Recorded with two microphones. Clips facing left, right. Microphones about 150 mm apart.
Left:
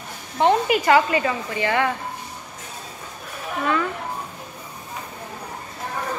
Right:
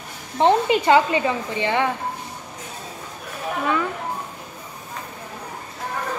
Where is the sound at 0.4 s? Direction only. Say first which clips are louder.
Right 1 dB; 25° right (ahead or behind).